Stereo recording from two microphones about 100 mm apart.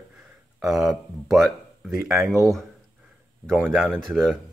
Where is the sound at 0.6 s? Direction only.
5° right (ahead or behind).